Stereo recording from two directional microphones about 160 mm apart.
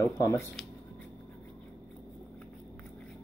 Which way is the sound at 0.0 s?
20° left (ahead or behind).